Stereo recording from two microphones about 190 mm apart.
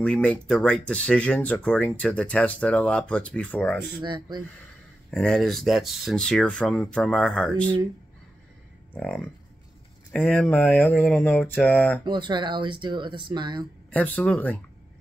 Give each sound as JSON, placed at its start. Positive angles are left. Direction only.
{"t": 0.0, "sound": "speech", "side_deg": 5}
{"t": 4.0, "sound": "speech", "side_deg": -25}
{"t": 5.1, "sound": "speech", "side_deg": 5}
{"t": 8.9, "sound": "speech", "side_deg": 5}
{"t": 12.0, "sound": "speech", "side_deg": -25}
{"t": 13.8, "sound": "speech", "side_deg": 10}